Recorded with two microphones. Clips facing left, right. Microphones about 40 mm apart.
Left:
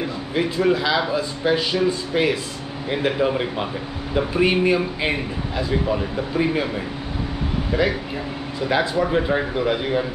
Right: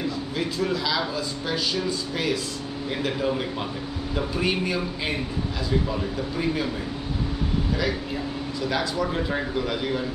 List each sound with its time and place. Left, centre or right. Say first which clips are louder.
0.4 s speech: left 8 dB; left
8.5 s speech: left 6 dB; left